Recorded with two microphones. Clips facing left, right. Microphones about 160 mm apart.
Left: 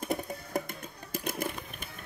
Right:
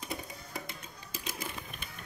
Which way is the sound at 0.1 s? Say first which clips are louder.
Left 9 dB; 50° left (ahead or behind).